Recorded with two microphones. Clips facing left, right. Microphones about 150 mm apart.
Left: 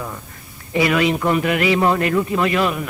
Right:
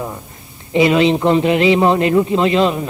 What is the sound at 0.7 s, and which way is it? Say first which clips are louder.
A man's voice: right 5 dB; 25° right (ahead or behind).